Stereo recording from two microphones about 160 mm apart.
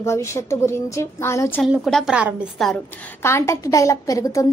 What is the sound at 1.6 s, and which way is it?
A woman's voice, centre (ahead or behind).